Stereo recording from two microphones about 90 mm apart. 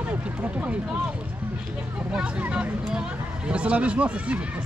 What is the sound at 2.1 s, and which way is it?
Speech, 10° right (ahead or behind).